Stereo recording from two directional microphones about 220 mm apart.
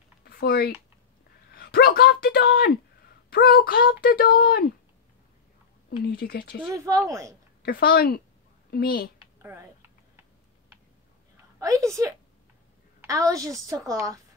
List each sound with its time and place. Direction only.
0.2 s typing: 45° left (ahead or behind)
1.5 s speech: 45° left (ahead or behind)
5.9 s speech: 45° left (ahead or behind)
6.6 s a woman's voice: 15° right (ahead or behind)
7.6 s speech: 45° left (ahead or behind)
9.4 s a sound: 10° right (ahead or behind)
11.6 s a woman's voice: 15° right (ahead or behind)
13.0 s a woman's voice: 15° right (ahead or behind)